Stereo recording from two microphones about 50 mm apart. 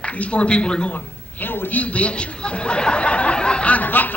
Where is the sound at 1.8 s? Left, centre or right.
Left.